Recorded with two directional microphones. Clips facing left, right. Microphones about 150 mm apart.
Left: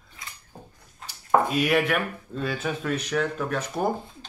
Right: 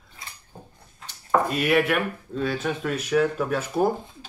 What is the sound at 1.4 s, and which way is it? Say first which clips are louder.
Speech: right 1 dB; centre (ahead or behind).